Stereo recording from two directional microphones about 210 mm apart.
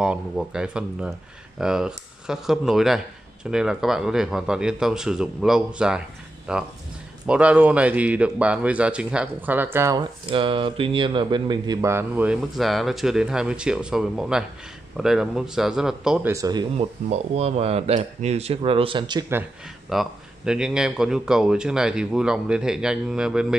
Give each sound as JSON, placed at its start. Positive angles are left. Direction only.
{"t": 0.0, "sound": "speech", "side_deg": -5}
{"t": 10.3, "sound": "speech", "side_deg": -25}
{"t": 16.7, "sound": "speech", "side_deg": -30}
{"t": 19.9, "sound": "speech", "side_deg": 0}